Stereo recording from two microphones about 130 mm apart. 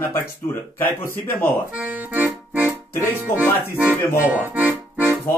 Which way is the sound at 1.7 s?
10° right (ahead or behind).